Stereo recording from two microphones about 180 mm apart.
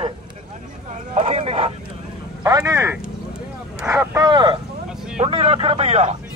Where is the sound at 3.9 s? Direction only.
20° right (ahead or behind).